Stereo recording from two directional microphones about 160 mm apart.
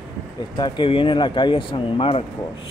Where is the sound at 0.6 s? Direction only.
30° left (ahead or behind).